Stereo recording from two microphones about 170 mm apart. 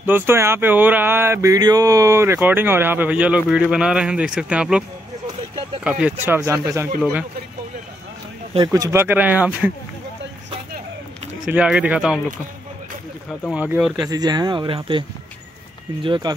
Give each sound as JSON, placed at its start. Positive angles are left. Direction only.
{"t": 0.0, "sound": "speech", "side_deg": -15}
{"t": 5.9, "sound": "speech", "side_deg": -5}
{"t": 8.7, "sound": "speech", "side_deg": -15}
{"t": 11.4, "sound": "speech", "side_deg": -5}
{"t": 13.5, "sound": "speech", "side_deg": -5}
{"t": 14.0, "sound": "speech", "side_deg": -25}